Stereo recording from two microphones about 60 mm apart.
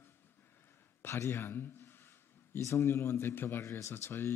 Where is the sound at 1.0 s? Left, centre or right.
Left.